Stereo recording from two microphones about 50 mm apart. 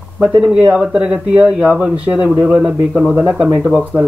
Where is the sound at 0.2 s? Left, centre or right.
Centre.